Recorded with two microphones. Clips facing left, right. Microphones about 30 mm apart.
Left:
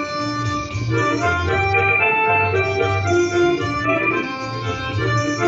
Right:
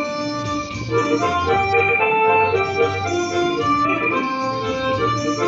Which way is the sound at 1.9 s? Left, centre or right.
Centre.